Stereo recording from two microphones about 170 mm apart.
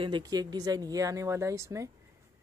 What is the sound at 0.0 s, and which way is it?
Speech, 25° right (ahead or behind).